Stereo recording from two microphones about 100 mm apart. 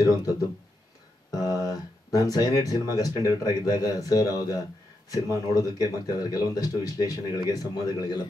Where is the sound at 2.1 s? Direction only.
40° left (ahead or behind).